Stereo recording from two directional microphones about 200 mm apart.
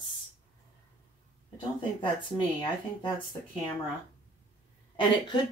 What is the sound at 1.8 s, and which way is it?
Speech, 25° left (ahead or behind).